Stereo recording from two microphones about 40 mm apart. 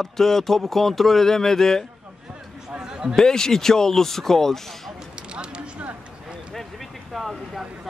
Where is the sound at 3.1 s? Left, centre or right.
Centre.